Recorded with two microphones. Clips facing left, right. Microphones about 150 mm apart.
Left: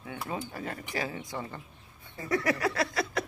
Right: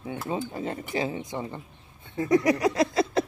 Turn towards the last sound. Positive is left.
turn(degrees=-20)  # may be behind; listen again after turning